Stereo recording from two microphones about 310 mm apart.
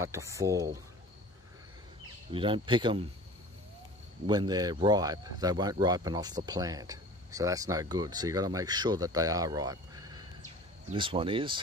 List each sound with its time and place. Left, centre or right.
0.0 s speech: centre
2.3 s speech: centre
4.3 s speech: centre